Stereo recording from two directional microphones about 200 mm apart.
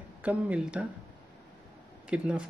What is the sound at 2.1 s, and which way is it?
Speech, 5° right (ahead or behind).